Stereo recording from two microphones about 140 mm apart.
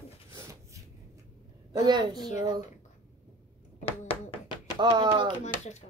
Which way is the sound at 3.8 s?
45° left (ahead or behind).